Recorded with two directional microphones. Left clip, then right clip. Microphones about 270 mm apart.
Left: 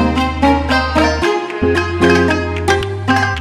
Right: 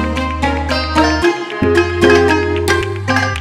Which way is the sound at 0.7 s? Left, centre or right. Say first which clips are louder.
Even; centre.